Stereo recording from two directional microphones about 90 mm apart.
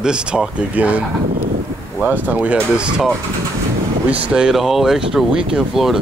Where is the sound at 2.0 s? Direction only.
15° right (ahead or behind).